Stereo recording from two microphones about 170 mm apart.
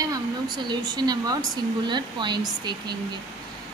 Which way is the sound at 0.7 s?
25° right (ahead or behind).